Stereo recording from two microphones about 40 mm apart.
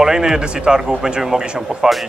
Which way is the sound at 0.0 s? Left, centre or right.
Centre.